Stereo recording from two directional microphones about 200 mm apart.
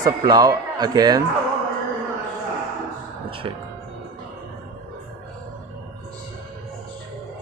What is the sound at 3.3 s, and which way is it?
Music, 25° right (ahead or behind).